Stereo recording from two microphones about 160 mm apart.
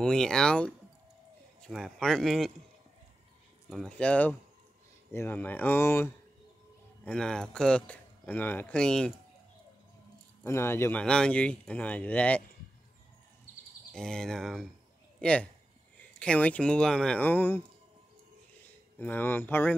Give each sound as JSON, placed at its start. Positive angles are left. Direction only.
{"t": 0.0, "sound": "speech", "side_deg": 5}
{"t": 3.7, "sound": "speech", "side_deg": 5}
{"t": 7.1, "sound": "speech", "side_deg": 5}
{"t": 10.4, "sound": "speech", "side_deg": 15}
{"t": 13.9, "sound": "speech", "side_deg": 5}
{"t": 18.9, "sound": "speech", "side_deg": 10}